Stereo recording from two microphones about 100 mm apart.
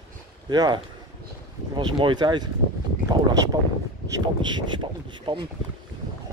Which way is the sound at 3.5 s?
45° right (ahead or behind).